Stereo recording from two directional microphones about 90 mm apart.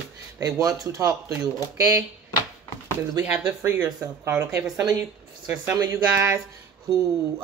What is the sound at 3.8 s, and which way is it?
Speech, 35° right (ahead or behind).